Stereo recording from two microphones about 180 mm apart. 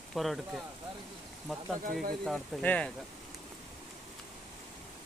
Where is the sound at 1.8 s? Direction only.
55° right (ahead or behind).